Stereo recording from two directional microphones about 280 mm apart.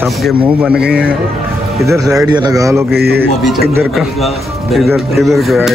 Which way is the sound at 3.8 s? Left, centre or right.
Centre.